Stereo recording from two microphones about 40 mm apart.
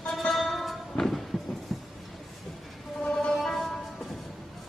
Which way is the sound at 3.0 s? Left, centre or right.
Left.